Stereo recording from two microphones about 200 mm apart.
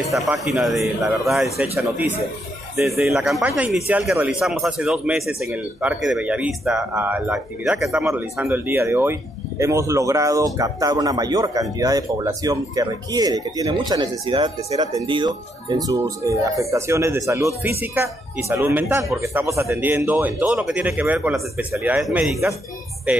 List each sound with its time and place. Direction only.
0.0 s speech: centre (ahead or behind)
2.8 s speech: 5° right (ahead or behind)